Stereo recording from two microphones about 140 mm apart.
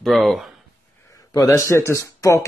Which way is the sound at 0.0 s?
Centre (ahead or behind).